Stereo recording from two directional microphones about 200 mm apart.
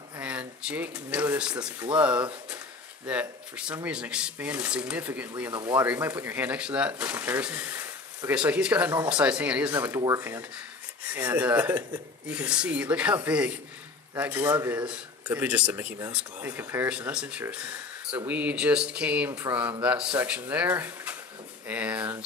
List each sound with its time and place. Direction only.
0.2 s a man's voice: 5° right (ahead or behind)
5.5 s speech: 20° right (ahead or behind)
5.8 s a man's voice: 10° right (ahead or behind)